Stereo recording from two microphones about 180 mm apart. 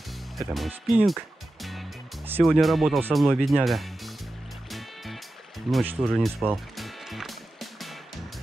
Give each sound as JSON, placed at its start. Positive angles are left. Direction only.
{"t": 0.4, "sound": "speech", "side_deg": 0}
{"t": 1.6, "sound": "music", "side_deg": 0}
{"t": 2.4, "sound": "speech", "side_deg": 0}
{"t": 4.6, "sound": "music", "side_deg": 0}
{"t": 5.9, "sound": "speech", "side_deg": -10}
{"t": 6.5, "sound": "music", "side_deg": 0}